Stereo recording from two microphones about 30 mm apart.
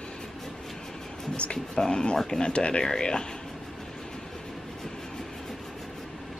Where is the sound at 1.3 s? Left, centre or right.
Left.